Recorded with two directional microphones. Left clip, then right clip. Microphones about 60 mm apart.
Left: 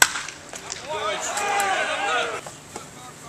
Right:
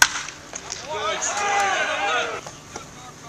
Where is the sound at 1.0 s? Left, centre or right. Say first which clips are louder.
Right 2 dB; right.